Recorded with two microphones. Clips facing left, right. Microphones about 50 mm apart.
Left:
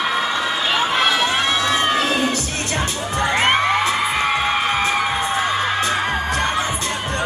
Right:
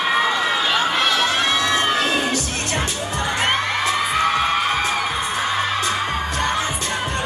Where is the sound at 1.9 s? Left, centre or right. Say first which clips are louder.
Left 1 dB; left.